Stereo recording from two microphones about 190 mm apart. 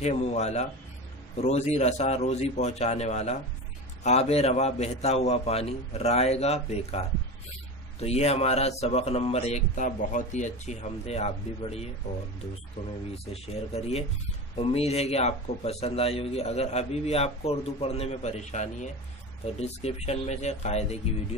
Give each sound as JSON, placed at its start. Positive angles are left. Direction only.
{"t": 0.0, "sound": "speech", "side_deg": 35}
{"t": 13.3, "sound": "speech", "side_deg": 35}